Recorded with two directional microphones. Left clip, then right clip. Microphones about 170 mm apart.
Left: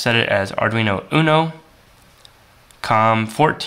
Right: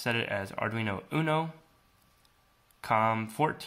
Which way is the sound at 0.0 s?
5° left (ahead or behind).